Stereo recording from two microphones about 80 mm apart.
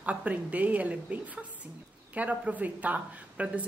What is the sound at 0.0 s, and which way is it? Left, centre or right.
A woman's voice, centre.